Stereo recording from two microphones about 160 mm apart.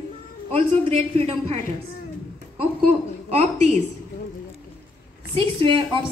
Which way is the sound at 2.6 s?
45° right (ahead or behind).